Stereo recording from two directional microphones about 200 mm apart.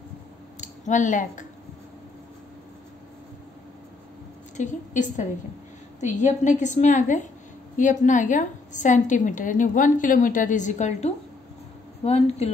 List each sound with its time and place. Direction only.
0.6 s speech: 40° left (ahead or behind)
4.6 s a woman's voice: 40° left (ahead or behind)